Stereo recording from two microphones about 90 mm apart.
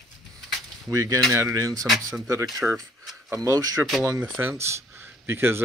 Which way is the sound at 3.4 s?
40° right (ahead or behind).